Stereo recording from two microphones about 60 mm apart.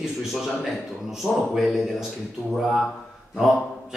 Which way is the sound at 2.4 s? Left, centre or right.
Centre.